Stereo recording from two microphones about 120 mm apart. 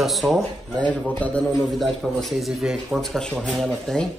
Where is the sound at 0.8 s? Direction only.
10° left (ahead or behind).